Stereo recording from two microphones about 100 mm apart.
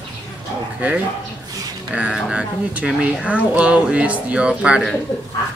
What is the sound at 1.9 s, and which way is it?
Speech, 10° right (ahead or behind).